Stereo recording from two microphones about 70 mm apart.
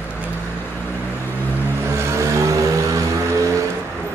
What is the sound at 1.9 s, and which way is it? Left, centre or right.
Vehicle, right.